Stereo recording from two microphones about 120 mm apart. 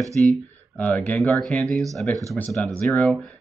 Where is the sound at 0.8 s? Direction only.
10° left (ahead or behind).